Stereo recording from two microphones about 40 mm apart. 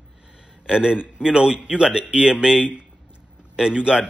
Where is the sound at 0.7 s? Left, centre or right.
Right.